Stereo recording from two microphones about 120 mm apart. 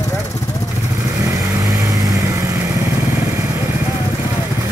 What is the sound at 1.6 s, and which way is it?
Vehicle, 30° right (ahead or behind).